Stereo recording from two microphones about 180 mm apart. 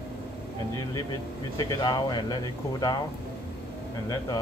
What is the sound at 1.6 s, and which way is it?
Speech, 20° left (ahead or behind).